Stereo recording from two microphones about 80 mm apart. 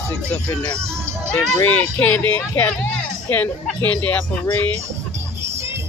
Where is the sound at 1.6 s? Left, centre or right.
Left.